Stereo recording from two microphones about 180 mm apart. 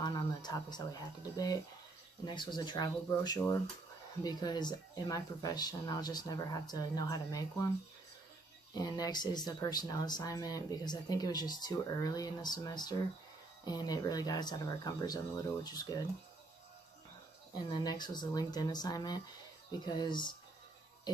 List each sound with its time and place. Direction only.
0.0 s speech: 25° left (ahead or behind)
8.7 s speech: 20° left (ahead or behind)
17.6 s speech: 25° left (ahead or behind)